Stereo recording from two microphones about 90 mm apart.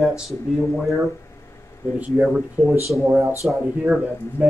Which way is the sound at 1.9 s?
15° right (ahead or behind).